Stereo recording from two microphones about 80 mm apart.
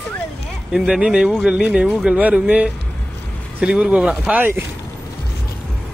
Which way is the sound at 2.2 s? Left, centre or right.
Centre.